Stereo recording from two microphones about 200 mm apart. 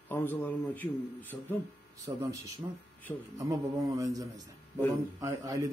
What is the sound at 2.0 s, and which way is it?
Speech, 15° right (ahead or behind).